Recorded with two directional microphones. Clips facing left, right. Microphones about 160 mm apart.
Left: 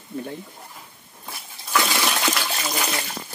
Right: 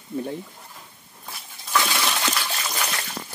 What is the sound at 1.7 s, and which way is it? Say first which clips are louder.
Water: left 1 dB; 10° left (ahead or behind).